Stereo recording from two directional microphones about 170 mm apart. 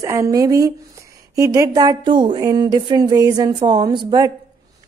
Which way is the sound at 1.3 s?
20° right (ahead or behind).